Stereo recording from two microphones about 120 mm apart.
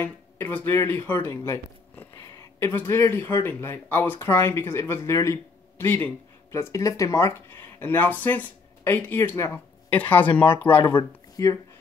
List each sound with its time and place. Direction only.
0.0 s speech: 15° left (ahead or behind)
10.4 s speech: 45° left (ahead or behind)
11.4 s speech: 25° left (ahead or behind)